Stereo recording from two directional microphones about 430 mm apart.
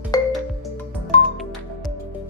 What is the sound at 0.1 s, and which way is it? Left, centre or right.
Music, centre.